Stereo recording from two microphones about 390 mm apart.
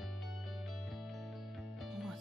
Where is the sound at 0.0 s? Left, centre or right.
Centre.